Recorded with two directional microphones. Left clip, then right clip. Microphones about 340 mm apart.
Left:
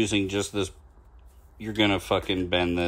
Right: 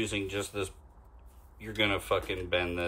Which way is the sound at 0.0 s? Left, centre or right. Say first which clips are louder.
Left 7 dB; centre.